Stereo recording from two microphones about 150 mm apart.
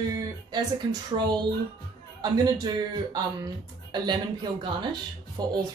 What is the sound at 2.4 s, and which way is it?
Speech, 25° right (ahead or behind).